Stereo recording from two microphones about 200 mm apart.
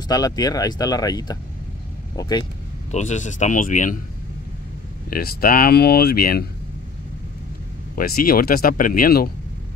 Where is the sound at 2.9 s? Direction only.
35° left (ahead or behind).